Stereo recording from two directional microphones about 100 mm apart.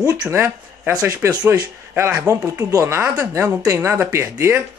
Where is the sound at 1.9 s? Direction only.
30° right (ahead or behind).